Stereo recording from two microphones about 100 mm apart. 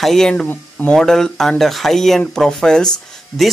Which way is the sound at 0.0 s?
5° left (ahead or behind).